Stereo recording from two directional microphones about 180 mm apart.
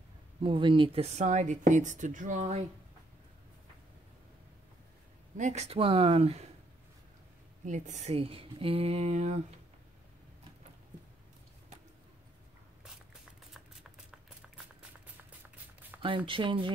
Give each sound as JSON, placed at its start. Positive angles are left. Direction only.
{"t": 0.4, "sound": "speech", "side_deg": -30}
{"t": 5.4, "sound": "speech", "side_deg": -40}
{"t": 7.6, "sound": "speech", "side_deg": -40}
{"t": 15.9, "sound": "a sound", "side_deg": -5}
{"t": 16.3, "sound": "speech", "side_deg": -25}